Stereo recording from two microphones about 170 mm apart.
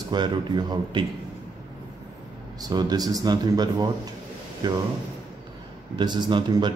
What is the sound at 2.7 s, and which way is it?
Speech, 25° right (ahead or behind).